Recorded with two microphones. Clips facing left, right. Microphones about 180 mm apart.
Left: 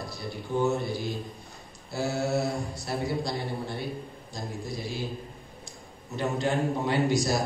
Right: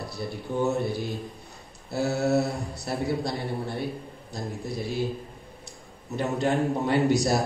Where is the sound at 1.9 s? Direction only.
60° right (ahead or behind).